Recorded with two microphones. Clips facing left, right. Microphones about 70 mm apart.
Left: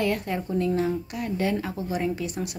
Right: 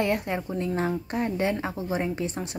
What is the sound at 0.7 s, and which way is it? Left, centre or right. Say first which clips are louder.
Speech: left 1 dB; right.